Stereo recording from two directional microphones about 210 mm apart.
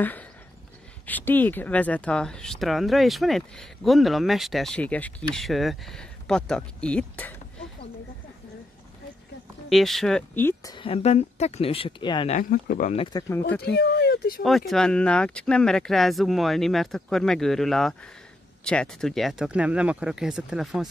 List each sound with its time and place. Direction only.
1.0 s speech: 10° left (ahead or behind)
9.7 s speech: centre (ahead or behind); by 12.3 s 20° left (ahead or behind)
12.3 s speech: 40° left (ahead or behind)
12.9 s speech: 25° left (ahead or behind)
13.7 s speech: 50° left (ahead or behind)
14.7 s speech: 5° left (ahead or behind)